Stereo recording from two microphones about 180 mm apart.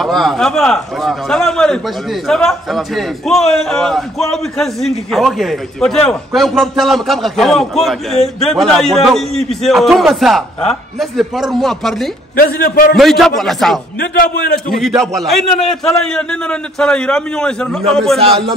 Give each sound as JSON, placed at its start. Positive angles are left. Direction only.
{"t": 0.0, "sound": "a man's voice", "side_deg": 0}
{"t": 12.4, "sound": "a man's voice", "side_deg": 55}
{"t": 12.9, "sound": "a man's voice", "side_deg": 0}
{"t": 13.9, "sound": "a man's voice", "side_deg": 55}
{"t": 14.8, "sound": "a man's voice", "side_deg": 0}
{"t": 18.2, "sound": "speech", "side_deg": -30}